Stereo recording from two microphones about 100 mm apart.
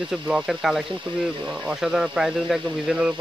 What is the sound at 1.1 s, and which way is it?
Speech, 55° right (ahead or behind).